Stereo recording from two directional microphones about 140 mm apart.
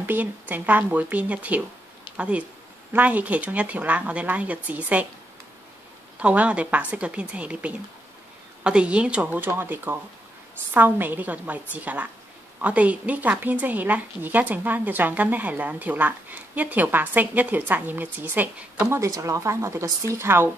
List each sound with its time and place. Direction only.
0.0 s a woman's voice: 15° right (ahead or behind)
6.1 s a woman's voice: 10° right (ahead or behind)